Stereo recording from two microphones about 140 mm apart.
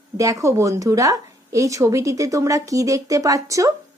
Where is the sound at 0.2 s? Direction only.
25° right (ahead or behind).